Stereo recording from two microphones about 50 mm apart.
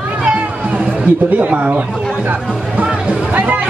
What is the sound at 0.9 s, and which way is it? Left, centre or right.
Speech, right.